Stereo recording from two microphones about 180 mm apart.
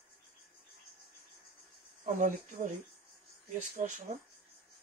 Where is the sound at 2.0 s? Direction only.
45° right (ahead or behind).